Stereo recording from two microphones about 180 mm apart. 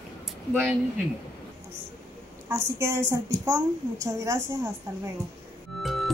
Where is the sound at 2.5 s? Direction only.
15° right (ahead or behind).